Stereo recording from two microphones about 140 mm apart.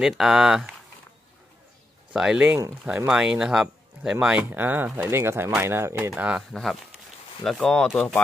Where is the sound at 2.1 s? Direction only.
5° right (ahead or behind).